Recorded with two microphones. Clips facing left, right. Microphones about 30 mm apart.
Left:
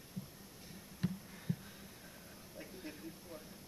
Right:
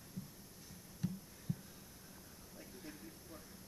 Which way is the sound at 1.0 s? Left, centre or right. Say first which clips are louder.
Left 3 dB; left.